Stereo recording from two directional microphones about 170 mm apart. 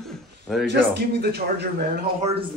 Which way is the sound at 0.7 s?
80° right.